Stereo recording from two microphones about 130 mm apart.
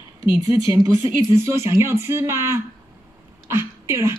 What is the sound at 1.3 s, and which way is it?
Speech, 20° right (ahead or behind).